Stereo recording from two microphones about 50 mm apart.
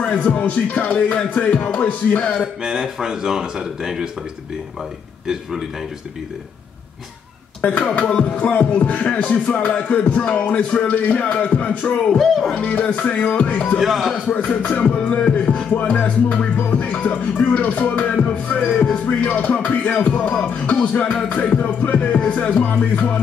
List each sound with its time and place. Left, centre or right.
0.1 s music: left
2.6 s speech: centre
5.2 s speech: centre
7.8 s music: left
12.2 s speech: centre
12.5 s music: left
13.7 s speech: centre
14.2 s music: left